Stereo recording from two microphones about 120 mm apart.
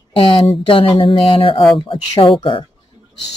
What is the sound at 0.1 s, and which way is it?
Speech, 45° left (ahead or behind).